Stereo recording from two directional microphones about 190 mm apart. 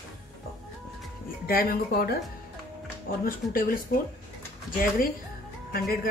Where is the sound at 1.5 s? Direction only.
50° left (ahead or behind).